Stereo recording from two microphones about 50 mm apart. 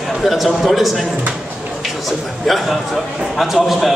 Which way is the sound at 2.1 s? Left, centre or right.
Centre.